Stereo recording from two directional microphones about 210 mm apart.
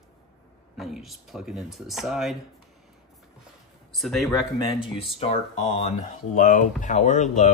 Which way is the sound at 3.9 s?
Centre (ahead or behind).